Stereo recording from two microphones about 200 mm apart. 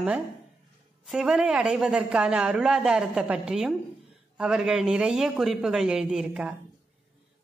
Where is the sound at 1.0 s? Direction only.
Centre (ahead or behind).